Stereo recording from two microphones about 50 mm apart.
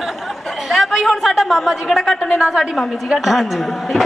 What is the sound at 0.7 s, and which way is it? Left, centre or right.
A woman's voice, centre.